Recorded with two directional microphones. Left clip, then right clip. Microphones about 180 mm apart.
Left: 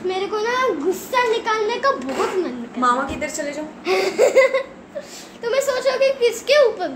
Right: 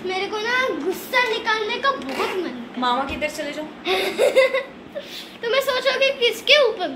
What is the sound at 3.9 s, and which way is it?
Speech, 15° left (ahead or behind).